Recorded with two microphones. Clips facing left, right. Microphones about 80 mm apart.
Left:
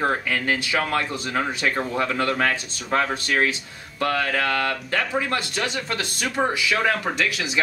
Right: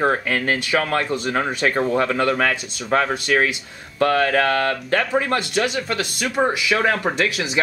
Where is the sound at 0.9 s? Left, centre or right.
Right.